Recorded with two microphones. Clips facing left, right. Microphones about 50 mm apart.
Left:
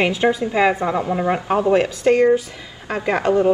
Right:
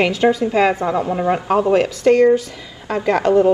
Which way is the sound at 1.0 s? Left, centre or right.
Centre.